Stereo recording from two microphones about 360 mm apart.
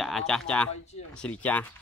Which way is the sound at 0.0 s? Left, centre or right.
Centre.